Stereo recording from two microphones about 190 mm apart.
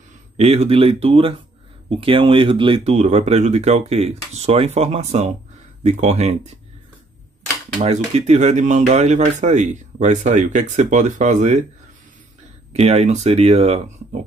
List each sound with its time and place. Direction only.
0.4 s speech: 35° right (ahead or behind)
7.8 s speech: 35° right (ahead or behind)
12.7 s speech: 35° right (ahead or behind)